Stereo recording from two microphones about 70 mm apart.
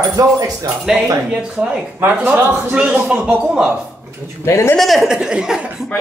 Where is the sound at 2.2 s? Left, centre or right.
Right.